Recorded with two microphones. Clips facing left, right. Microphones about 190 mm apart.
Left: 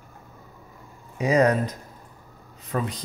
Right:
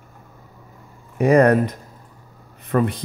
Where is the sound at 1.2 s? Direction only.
55° right (ahead or behind).